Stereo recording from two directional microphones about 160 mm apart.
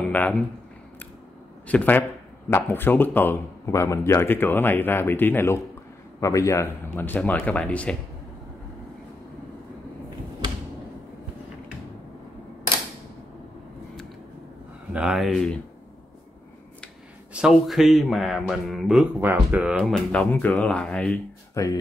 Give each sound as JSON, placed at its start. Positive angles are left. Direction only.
{"t": 0.1, "sound": "speech", "side_deg": 10}
{"t": 1.7, "sound": "speech", "side_deg": 10}
{"t": 14.9, "sound": "speech", "side_deg": -5}
{"t": 17.3, "sound": "speech", "side_deg": -5}
{"t": 19.8, "sound": "speech", "side_deg": 5}
{"t": 21.6, "sound": "speech", "side_deg": 20}